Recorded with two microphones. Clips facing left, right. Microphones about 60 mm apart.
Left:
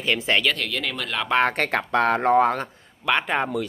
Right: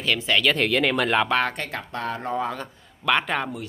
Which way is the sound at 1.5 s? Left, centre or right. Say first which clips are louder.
Left 9 dB; left.